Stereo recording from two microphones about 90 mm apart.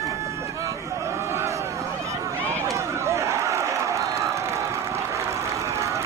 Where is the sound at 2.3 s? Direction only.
30° right (ahead or behind).